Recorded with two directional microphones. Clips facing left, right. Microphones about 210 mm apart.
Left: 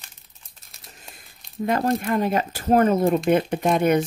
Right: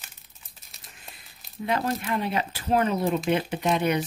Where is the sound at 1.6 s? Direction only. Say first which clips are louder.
Left 5 dB; 45° left (ahead or behind).